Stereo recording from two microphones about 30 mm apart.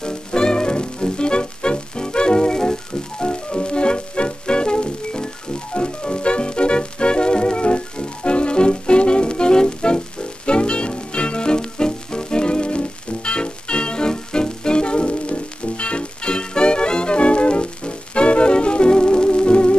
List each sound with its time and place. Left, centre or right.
0.0 s music: left